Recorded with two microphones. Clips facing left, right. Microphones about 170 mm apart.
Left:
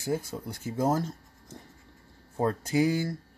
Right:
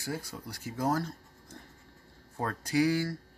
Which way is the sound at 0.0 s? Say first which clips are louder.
Left 7 dB; 20° left (ahead or behind).